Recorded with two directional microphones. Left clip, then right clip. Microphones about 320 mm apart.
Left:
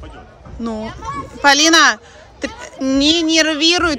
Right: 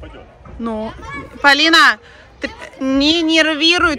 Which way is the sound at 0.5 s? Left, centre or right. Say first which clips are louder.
Right 2 dB; centre.